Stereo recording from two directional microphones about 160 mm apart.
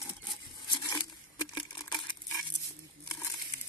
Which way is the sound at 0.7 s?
25° left (ahead or behind).